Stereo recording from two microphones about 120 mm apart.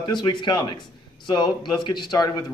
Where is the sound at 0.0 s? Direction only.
40° left (ahead or behind).